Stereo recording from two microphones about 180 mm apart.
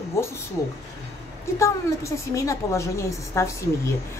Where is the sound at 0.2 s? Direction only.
15° left (ahead or behind).